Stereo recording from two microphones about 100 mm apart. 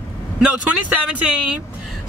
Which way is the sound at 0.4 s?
10° right (ahead or behind).